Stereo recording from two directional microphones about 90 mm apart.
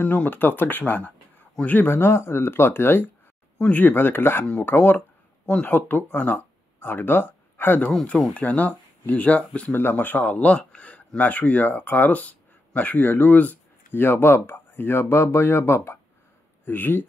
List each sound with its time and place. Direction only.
0.0 s speech: 20° left (ahead or behind)
7.9 s speech: 5° left (ahead or behind)
8.4 s speech: 15° left (ahead or behind)
9.7 s speech: 25° left (ahead or behind)